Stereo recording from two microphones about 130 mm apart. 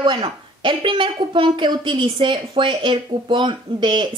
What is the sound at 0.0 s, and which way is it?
Speech, 35° right (ahead or behind).